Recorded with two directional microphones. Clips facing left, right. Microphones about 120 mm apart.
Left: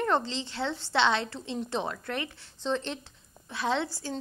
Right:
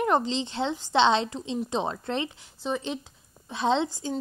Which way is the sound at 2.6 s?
10° right (ahead or behind).